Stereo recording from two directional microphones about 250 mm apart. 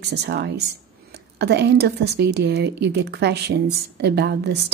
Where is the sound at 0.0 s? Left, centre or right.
Right.